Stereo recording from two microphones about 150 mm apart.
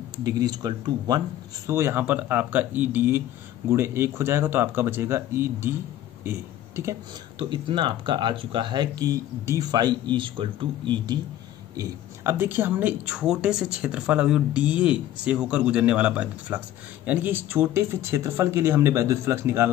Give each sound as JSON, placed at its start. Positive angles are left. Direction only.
{"t": 0.2, "sound": "speech", "side_deg": -25}
{"t": 1.7, "sound": "speech", "side_deg": -15}
{"t": 7.3, "sound": "speech", "side_deg": -35}
{"t": 11.7, "sound": "speech", "side_deg": -20}